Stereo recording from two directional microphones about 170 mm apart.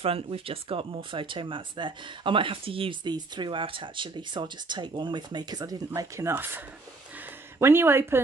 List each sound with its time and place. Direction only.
0.0 s speech: 35° right (ahead or behind); by 8.2 s 15° right (ahead or behind)